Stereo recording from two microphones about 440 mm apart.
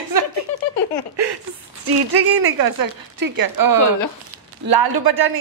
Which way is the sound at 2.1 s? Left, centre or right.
Right.